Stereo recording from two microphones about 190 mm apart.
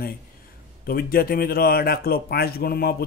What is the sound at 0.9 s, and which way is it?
Speech, 50° left (ahead or behind).